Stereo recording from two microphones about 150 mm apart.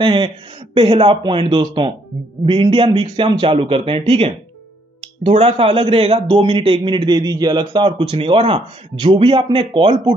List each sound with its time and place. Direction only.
0.0 s a man's voice: 35° right (ahead or behind)